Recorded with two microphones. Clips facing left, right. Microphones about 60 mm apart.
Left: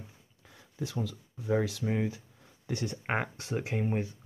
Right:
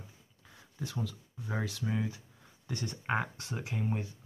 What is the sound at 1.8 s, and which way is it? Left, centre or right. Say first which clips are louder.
Speech: left 4 dB; left.